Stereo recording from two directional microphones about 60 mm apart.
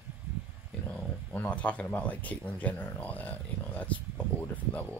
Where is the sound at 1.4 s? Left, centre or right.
Left.